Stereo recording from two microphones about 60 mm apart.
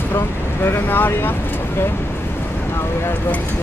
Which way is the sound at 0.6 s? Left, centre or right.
Left.